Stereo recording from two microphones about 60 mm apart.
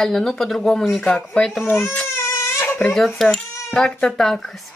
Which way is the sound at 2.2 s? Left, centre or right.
Left.